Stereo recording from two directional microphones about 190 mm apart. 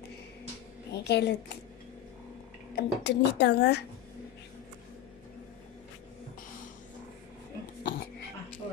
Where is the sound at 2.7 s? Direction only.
60° left (ahead or behind).